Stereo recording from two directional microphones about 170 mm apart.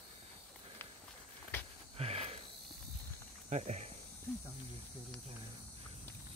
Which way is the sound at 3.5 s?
45° right (ahead or behind).